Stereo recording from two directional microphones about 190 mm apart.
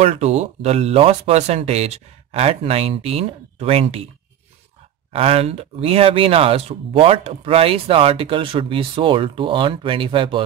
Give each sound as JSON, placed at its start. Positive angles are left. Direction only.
{"t": 0.0, "sound": "speech", "side_deg": -35}
{"t": 5.1, "sound": "speech", "side_deg": -30}